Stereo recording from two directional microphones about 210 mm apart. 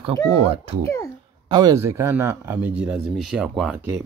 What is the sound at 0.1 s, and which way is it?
Speech, 20° right (ahead or behind).